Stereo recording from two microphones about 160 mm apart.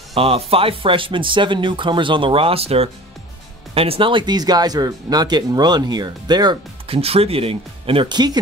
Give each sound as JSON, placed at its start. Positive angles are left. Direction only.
{"t": 0.1, "sound": "speech", "side_deg": -35}